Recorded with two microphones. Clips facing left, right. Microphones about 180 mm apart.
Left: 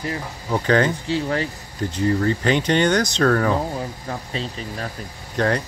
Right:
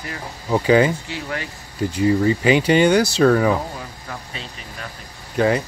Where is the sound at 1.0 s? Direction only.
30° left (ahead or behind).